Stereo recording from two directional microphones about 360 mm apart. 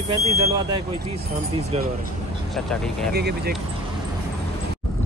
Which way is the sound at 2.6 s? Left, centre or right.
Centre.